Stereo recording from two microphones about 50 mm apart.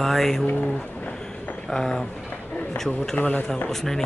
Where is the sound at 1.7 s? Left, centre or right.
Centre.